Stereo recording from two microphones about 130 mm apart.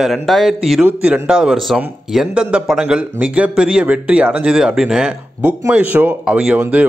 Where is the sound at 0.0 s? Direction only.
Centre (ahead or behind).